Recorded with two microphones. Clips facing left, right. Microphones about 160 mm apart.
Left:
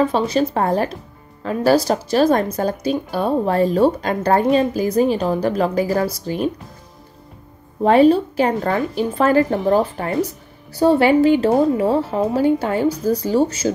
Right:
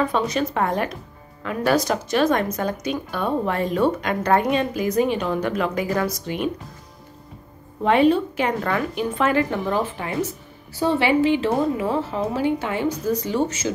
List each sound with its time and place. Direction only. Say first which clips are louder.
0.0 s speech: left 5 dB; 30° left (ahead or behind)
7.8 s speech: left 5 dB; 35° left (ahead or behind)